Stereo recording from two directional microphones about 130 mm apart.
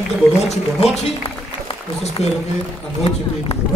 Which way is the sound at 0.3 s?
55° left (ahead or behind).